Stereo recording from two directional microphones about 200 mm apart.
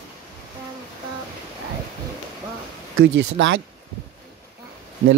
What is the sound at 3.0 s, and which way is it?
Speech, 70° right (ahead or behind).